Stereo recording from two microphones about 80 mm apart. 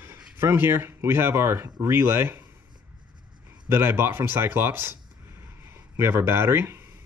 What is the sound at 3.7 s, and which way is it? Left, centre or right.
Speech, right.